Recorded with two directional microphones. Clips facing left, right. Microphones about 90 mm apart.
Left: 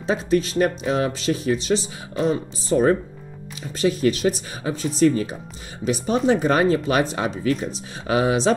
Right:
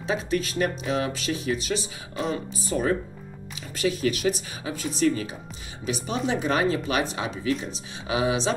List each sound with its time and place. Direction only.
0.0 s speech: 35° left (ahead or behind)